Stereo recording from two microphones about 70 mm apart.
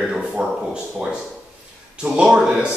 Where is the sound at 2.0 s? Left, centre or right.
Centre.